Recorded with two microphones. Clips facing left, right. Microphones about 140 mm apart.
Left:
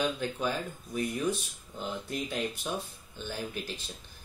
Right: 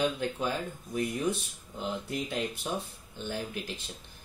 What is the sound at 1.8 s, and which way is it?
Speech, 20° right (ahead or behind).